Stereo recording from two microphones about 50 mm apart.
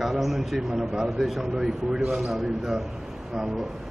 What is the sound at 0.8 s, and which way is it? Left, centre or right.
A man's voice, centre.